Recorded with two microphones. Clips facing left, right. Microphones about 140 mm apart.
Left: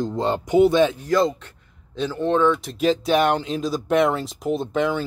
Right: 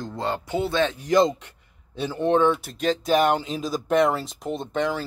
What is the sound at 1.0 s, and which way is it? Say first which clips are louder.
Speech: even; 20° right (ahead or behind).